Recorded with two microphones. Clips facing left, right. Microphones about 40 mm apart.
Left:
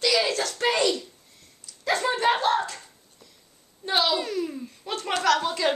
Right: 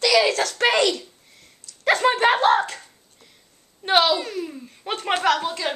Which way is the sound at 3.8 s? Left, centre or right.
Right.